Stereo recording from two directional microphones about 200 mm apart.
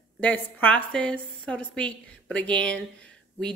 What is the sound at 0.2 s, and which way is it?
Speech, 5° left (ahead or behind).